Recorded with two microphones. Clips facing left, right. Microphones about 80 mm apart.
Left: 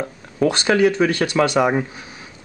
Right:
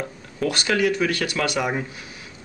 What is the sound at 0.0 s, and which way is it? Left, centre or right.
Speech, left.